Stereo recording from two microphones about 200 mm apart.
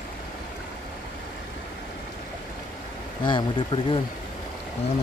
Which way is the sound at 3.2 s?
25° left (ahead or behind).